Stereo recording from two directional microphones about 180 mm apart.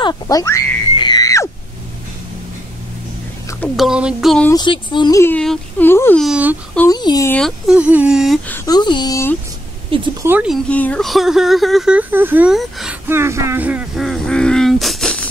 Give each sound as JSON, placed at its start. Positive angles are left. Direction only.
{"t": 0.0, "sound": "speech", "side_deg": 20}
{"t": 0.9, "sound": "screaming", "side_deg": 25}
{"t": 3.7, "sound": "speech", "side_deg": -5}
{"t": 4.5, "sound": "speech", "side_deg": 25}
{"t": 5.2, "sound": "speech", "side_deg": 5}
{"t": 6.2, "sound": "speech", "side_deg": -5}
{"t": 6.9, "sound": "speech", "side_deg": 20}
{"t": 7.3, "sound": "speech", "side_deg": 0}
{"t": 8.5, "sound": "speech", "side_deg": 15}
{"t": 9.8, "sound": "speech", "side_deg": -30}
{"t": 10.2, "sound": "speech", "side_deg": -5}
{"t": 10.7, "sound": "speech", "side_deg": 5}
{"t": 13.1, "sound": "speech", "side_deg": -15}